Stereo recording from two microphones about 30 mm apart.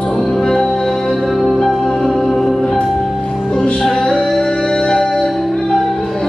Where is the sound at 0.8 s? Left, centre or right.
Centre.